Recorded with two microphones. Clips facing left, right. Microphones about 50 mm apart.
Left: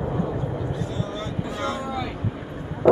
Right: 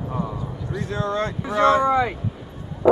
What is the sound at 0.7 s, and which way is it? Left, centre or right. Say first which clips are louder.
Vehicle: right 4 dB; right.